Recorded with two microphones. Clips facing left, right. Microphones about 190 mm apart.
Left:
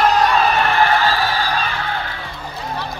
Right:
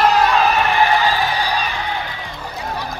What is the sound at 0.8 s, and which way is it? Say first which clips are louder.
Music: even; 15° right (ahead or behind).